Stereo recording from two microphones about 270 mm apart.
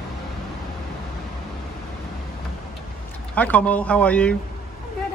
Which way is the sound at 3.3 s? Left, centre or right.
Centre.